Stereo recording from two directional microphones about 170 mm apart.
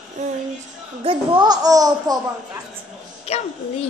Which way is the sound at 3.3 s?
35° left (ahead or behind).